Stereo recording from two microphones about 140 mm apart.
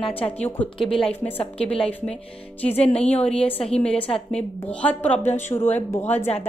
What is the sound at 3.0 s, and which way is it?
Speech, 10° left (ahead or behind).